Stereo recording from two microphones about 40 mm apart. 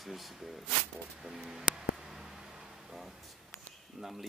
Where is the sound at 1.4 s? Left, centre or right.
Centre.